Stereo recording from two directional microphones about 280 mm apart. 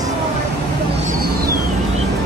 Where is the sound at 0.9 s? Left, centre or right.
Right.